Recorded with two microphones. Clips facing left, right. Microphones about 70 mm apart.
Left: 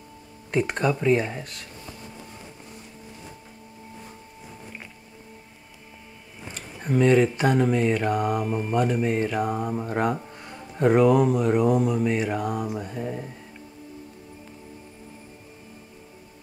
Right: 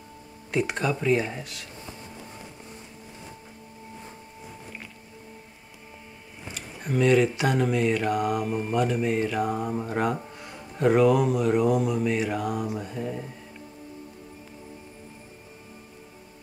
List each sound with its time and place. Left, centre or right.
0.8 s speech: centre
6.8 s speech: centre
7.5 s mantra: centre